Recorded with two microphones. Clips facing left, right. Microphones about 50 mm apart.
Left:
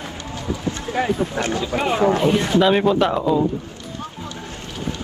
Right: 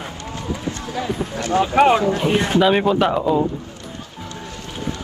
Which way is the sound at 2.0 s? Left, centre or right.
Left.